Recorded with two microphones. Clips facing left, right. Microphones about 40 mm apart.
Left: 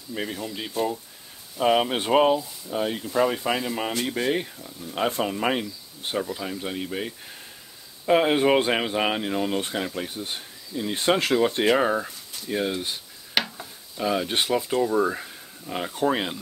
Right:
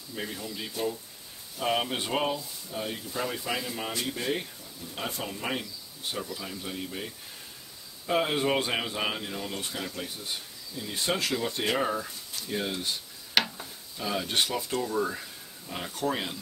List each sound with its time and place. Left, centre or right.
0.1 s speech: left
8.1 s speech: left
12.4 s speech: centre